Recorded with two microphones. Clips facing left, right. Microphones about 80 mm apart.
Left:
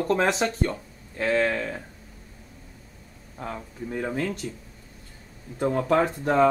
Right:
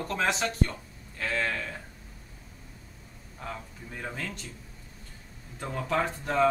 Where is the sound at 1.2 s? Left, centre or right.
Centre.